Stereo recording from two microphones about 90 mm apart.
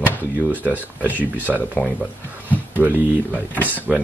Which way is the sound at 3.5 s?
20° left (ahead or behind).